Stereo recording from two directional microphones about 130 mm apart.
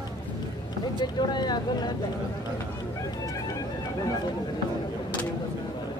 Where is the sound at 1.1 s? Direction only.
35° left (ahead or behind).